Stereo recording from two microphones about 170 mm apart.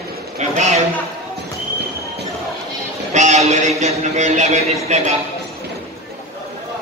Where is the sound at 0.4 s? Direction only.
45° right (ahead or behind).